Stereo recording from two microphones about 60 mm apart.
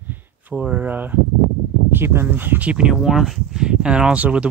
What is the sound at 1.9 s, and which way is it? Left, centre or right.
Speech, right.